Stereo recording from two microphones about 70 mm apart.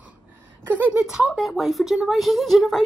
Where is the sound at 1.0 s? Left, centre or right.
Centre.